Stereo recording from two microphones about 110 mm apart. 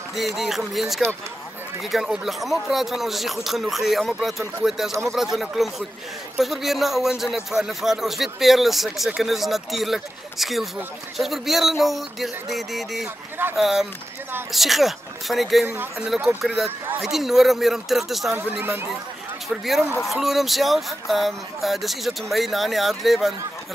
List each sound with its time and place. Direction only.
0.4 s a man's voice: centre (ahead or behind)
15.6 s speech: 20° right (ahead or behind)
16.0 s a man's voice: 5° right (ahead or behind)
18.3 s speech: 20° right (ahead or behind)
19.5 s a man's voice: centre (ahead or behind)